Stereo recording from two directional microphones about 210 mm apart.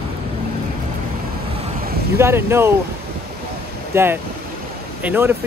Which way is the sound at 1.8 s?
50° right (ahead or behind).